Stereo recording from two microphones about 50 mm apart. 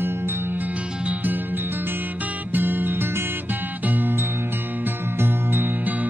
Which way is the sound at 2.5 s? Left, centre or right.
Right.